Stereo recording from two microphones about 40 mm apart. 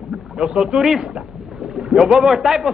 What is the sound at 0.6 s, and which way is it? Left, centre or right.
A man's voice, centre.